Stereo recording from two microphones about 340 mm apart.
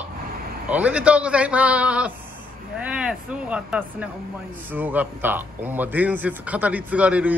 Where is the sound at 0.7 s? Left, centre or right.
Centre.